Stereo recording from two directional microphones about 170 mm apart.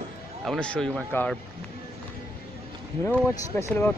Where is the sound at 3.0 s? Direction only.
15° left (ahead or behind).